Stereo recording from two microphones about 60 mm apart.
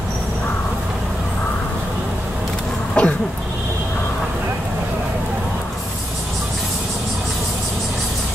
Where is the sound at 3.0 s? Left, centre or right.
Centre.